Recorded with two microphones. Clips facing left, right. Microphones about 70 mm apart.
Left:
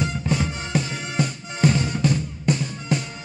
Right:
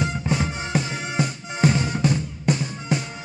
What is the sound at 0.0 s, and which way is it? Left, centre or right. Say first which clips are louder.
Music: even; right.